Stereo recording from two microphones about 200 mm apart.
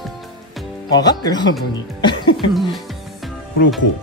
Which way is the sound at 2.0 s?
25° left (ahead or behind).